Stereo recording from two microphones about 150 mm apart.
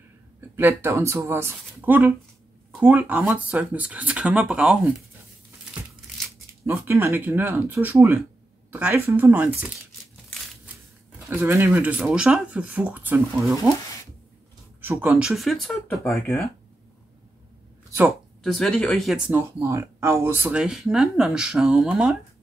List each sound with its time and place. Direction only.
0.6 s speech: 15° right (ahead or behind)
6.6 s speech: 15° right (ahead or behind)
11.1 s speech: 15° right (ahead or behind)
14.8 s speech: 15° right (ahead or behind)
18.4 s speech: centre (ahead or behind)
19.3 s speech: 20° right (ahead or behind)
20.5 s speech: 5° right (ahead or behind)